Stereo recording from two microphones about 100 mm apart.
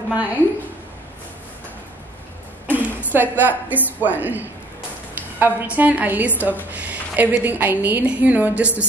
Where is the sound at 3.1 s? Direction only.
20° right (ahead or behind).